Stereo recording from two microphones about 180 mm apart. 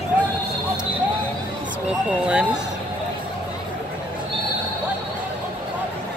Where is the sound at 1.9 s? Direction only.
5° right (ahead or behind).